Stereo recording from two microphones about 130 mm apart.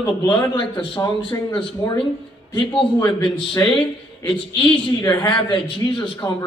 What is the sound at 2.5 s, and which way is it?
Speech, 40° left (ahead or behind).